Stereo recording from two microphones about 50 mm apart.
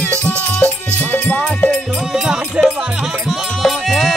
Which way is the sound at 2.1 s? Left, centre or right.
Centre.